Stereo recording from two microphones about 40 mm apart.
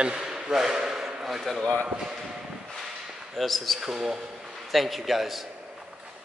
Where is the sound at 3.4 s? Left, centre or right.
Centre.